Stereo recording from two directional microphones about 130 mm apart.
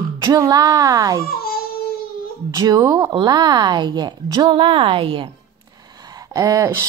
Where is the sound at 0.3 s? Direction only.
30° right (ahead or behind).